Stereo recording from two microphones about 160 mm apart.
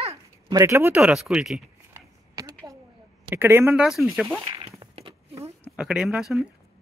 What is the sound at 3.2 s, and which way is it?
Speech, 15° right (ahead or behind).